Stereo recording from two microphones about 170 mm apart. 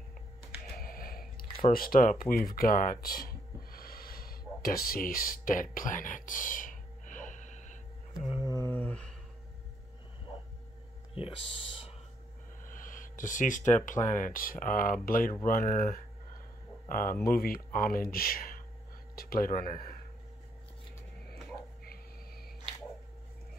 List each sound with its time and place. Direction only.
0.7 s a sound: 60° left (ahead or behind)
8.4 s mantra: 20° left (ahead or behind)
11.1 s speech: 30° left (ahead or behind)
12.6 s speech: 50° left (ahead or behind)